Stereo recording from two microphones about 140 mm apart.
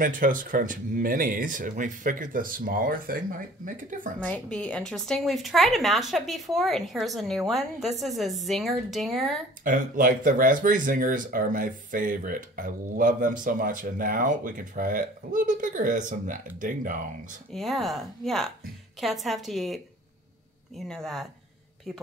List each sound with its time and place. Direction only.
0.0 s speech: 75° right (ahead or behind)
4.2 s a woman's voice: 10° left (ahead or behind)
9.7 s speech: 75° right (ahead or behind)
17.5 s a woman's voice: centre (ahead or behind)